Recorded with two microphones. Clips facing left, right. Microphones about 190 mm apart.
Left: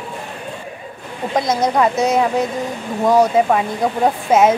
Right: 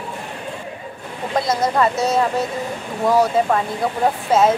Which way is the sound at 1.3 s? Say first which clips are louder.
Left 2 dB; 20° left (ahead or behind).